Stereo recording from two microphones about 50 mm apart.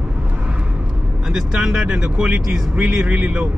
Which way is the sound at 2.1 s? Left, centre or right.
Right.